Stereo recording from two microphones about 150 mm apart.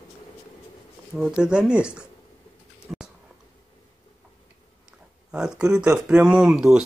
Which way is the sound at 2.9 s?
10° right (ahead or behind).